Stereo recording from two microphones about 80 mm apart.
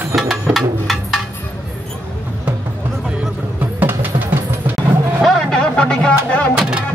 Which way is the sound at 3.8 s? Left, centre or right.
Right.